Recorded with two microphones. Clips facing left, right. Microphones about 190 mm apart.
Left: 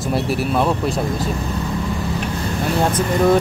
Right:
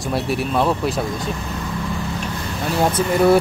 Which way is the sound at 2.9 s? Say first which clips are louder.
Right 2 dB; 10° right (ahead or behind).